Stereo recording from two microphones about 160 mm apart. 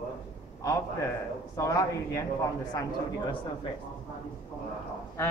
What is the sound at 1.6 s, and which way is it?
A man's voice, 20° left (ahead or behind).